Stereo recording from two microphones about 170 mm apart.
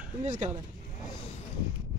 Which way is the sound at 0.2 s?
40° right (ahead or behind).